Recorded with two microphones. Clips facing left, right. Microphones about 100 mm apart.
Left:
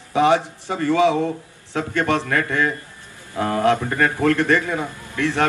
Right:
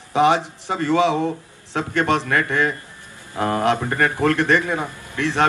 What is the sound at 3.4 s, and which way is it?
Speech, 25° right (ahead or behind).